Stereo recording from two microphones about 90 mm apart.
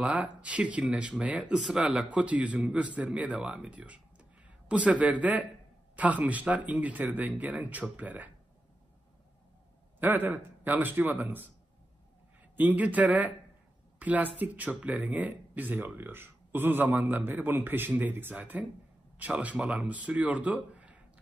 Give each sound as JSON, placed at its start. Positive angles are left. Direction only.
{"t": 0.0, "sound": "speech", "side_deg": -15}
{"t": 9.9, "sound": "speech", "side_deg": -20}
{"t": 12.5, "sound": "speech", "side_deg": -20}